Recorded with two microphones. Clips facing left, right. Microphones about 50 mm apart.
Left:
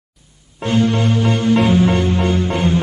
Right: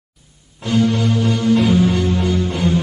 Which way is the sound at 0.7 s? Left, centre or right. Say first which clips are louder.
Left 1 dB; left.